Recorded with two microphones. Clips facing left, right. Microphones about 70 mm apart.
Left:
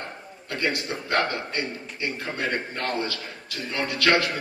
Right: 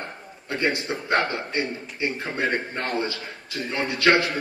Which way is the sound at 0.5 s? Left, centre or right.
Right.